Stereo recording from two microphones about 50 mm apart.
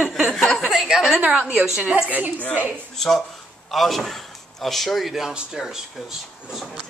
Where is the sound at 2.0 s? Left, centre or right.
Right.